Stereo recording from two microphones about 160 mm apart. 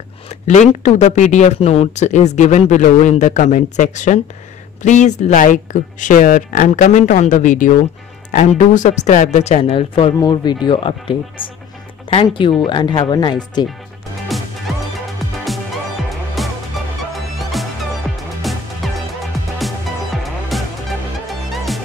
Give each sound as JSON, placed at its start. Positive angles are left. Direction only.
{"t": 0.3, "sound": "speech", "side_deg": 50}
{"t": 14.3, "sound": "music", "side_deg": 0}